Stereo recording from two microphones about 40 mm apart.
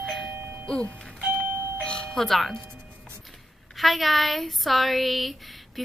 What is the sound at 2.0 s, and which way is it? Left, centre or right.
Speech, centre.